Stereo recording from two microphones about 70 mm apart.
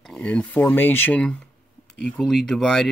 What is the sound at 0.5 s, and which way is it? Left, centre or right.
Speech, left.